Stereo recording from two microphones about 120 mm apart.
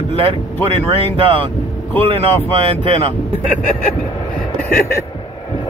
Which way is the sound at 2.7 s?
55° right (ahead or behind).